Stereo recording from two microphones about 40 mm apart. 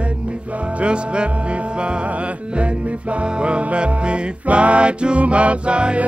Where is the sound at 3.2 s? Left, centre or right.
Right.